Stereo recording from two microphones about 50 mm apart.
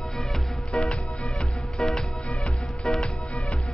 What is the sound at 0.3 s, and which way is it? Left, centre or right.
Music, centre.